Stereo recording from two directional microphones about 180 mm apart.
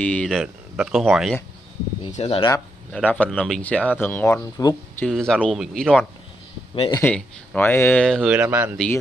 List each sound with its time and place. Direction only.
0.0 s speech: 5° left (ahead or behind)
2.1 s speech: 30° left (ahead or behind)
2.9 s speech: 5° left (ahead or behind)
5.0 s speech: 5° left (ahead or behind)
6.7 s speech: 30° left (ahead or behind)
7.0 s speech: 10° left (ahead or behind); by 8.7 s 10° right (ahead or behind)